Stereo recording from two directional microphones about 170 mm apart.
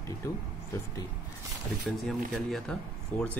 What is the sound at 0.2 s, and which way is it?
Speech, 20° left (ahead or behind).